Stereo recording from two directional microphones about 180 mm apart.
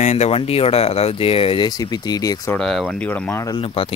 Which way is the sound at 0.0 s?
40° left (ahead or behind).